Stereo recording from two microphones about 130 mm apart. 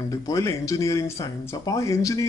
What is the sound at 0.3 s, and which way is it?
Speech, 25° left (ahead or behind).